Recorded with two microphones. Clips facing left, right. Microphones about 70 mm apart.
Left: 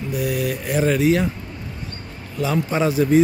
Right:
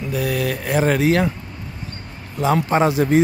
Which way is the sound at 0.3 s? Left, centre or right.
Right.